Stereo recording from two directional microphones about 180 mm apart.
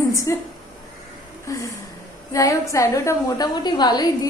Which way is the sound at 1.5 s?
20° left (ahead or behind).